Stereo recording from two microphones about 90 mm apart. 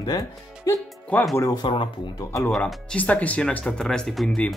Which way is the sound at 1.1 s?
20° left (ahead or behind).